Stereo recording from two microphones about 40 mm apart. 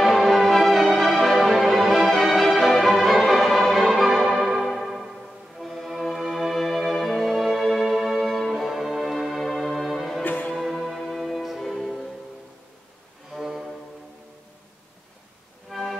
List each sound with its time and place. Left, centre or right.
0.0 s music: centre
4.3 s music: centre
4.6 s music: centre
10.2 s music: left
10.5 s music: centre
13.3 s music: centre
15.7 s music: centre